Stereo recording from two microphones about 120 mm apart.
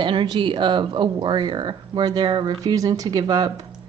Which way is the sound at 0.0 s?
40° right (ahead or behind).